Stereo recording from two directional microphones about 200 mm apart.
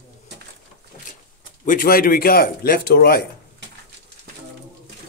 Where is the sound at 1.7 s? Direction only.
45° left (ahead or behind).